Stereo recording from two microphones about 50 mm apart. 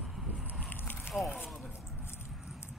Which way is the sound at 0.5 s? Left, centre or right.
Left.